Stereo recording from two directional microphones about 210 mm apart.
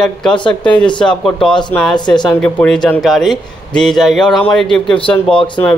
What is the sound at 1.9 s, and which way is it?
Speech, 20° left (ahead or behind).